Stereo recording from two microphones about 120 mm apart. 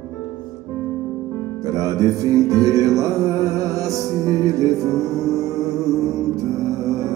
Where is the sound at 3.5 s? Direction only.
30° right (ahead or behind).